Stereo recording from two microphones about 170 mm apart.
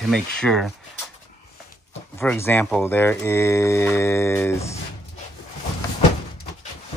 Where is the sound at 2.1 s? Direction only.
15° left (ahead or behind).